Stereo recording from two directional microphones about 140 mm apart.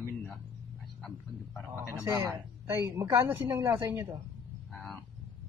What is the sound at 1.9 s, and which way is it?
A woman's voice, 20° right (ahead or behind).